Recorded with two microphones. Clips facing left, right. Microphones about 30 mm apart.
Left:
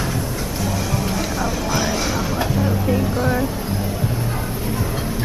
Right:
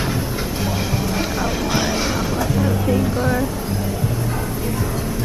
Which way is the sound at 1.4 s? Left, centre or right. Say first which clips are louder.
Right 1 dB; centre.